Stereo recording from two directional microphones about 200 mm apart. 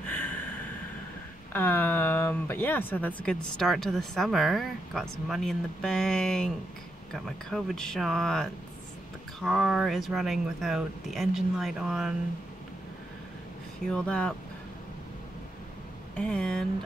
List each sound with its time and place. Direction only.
0.1 s a sound: 10° left (ahead or behind)
1.5 s speech: 10° left (ahead or behind)
13.8 s speech: 5° left (ahead or behind)
16.2 s speech: 5° left (ahead or behind)